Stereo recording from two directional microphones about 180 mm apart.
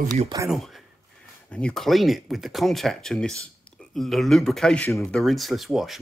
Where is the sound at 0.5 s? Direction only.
Centre (ahead or behind).